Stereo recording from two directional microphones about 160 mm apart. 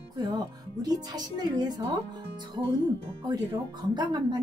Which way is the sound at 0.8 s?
25° right (ahead or behind).